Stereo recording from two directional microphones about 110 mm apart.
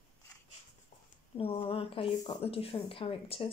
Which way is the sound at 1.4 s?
60° left (ahead or behind).